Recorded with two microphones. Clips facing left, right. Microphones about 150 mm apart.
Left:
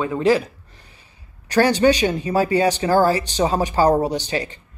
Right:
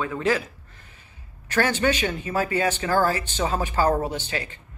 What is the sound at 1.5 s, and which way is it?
Speech, 35° left (ahead or behind).